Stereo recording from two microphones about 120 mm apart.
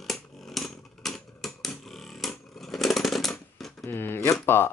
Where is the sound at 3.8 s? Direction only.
20° left (ahead or behind).